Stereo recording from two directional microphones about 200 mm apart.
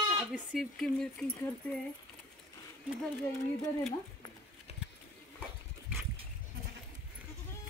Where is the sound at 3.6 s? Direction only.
Centre (ahead or behind).